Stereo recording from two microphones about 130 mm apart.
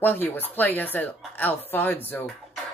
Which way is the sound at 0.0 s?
15° left (ahead or behind).